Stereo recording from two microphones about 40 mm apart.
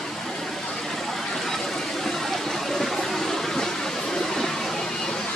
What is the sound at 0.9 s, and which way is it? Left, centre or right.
Vehicle, centre.